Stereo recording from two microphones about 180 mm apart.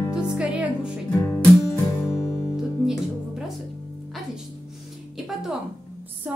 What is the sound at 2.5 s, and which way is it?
Music, 5° right (ahead or behind).